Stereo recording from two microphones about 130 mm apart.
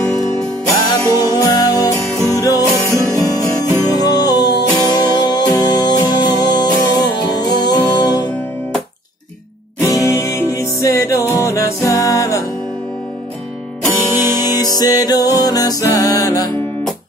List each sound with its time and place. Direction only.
0.7 s music: 30° left (ahead or behind)
9.8 s music: 25° left (ahead or behind)
14.2 s music: 30° left (ahead or behind)